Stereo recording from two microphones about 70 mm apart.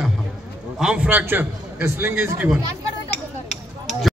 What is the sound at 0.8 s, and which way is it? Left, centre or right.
Speech, centre.